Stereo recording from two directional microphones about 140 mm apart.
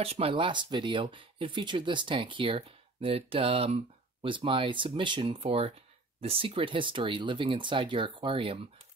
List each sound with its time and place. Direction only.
0.0 s speech: 45° right (ahead or behind)